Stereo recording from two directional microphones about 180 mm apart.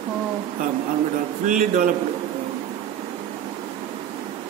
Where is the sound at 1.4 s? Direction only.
50° right (ahead or behind).